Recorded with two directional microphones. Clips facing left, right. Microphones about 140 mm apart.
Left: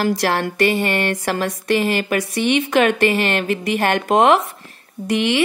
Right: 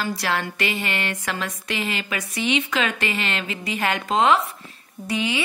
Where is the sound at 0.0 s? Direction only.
55° left (ahead or behind).